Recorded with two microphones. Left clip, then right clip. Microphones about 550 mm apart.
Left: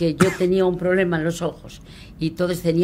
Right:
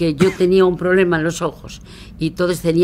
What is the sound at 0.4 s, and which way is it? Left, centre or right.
Speech, right.